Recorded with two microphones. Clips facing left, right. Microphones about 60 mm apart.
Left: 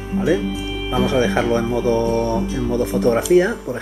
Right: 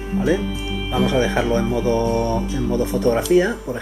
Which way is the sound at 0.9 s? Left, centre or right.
Centre.